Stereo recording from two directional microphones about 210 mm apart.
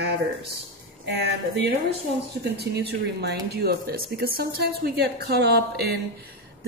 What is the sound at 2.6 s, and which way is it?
Speech, 55° right (ahead or behind).